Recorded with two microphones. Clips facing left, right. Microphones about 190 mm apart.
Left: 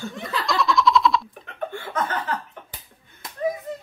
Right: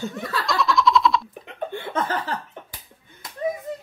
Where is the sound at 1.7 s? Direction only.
20° right (ahead or behind).